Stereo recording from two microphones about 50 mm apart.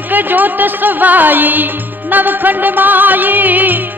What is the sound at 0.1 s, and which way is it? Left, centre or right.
Music, right.